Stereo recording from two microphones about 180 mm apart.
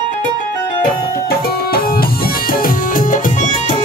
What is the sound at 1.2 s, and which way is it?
Music, 60° left (ahead or behind).